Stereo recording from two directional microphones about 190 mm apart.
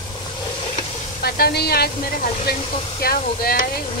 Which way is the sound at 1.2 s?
55° left (ahead or behind).